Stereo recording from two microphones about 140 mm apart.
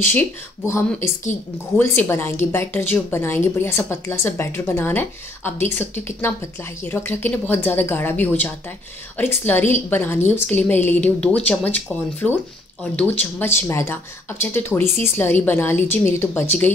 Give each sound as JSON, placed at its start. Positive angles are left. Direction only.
{"t": 0.0, "sound": "a woman's voice", "side_deg": 15}